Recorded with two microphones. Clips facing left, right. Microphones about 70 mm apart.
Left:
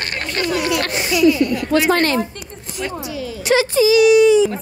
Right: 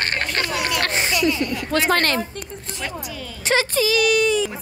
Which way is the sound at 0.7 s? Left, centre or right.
Right.